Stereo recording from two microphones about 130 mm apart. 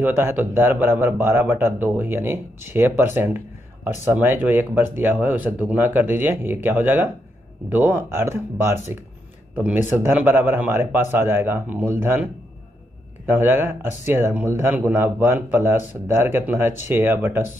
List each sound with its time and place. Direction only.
0.0 s speech: 20° right (ahead or behind)
13.3 s speech: 15° right (ahead or behind)